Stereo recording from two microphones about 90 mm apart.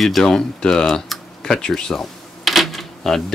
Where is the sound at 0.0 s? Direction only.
Centre (ahead or behind).